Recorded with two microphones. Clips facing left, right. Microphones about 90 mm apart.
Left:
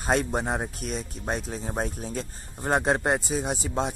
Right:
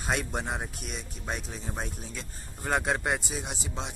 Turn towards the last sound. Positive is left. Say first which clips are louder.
# left 9 dB
turn(degrees=45)  # may be behind; listen again after turning